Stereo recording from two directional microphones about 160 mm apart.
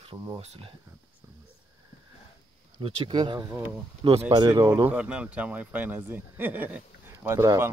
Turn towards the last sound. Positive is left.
turn(degrees=-15)  # may be behind; listen again after turning